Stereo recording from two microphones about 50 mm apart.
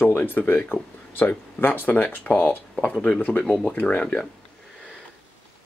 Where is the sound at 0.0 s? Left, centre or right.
Left.